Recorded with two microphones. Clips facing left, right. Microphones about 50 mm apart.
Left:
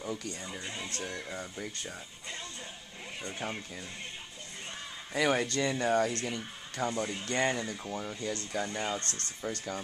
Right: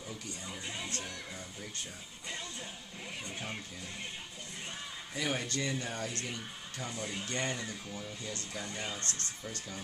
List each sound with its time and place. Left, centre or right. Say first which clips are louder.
0.5 s speech: left 1 dB; centre
3.3 s speech: left 6 dB; centre
5.1 s speech: left 7 dB; left
6.1 s speech: left 5 dB; centre
6.8 s speech: left 7 dB; left
7.9 s speech: left 6 dB; left
8.6 s speech: left 5 dB; centre
9.4 s speech: left 7 dB; left